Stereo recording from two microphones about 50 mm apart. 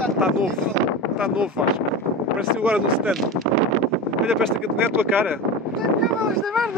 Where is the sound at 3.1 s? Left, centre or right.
Centre.